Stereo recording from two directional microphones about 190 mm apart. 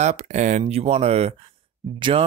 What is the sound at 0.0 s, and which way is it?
Speech, 35° right (ahead or behind).